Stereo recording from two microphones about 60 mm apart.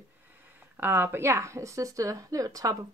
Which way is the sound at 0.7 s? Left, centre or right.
Right.